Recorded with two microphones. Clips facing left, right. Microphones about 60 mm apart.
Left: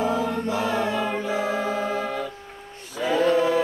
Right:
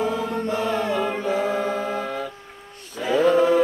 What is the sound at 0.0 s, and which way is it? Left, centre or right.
Chant, centre.